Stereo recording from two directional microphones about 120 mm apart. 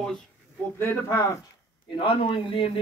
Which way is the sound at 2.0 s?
50° left (ahead or behind).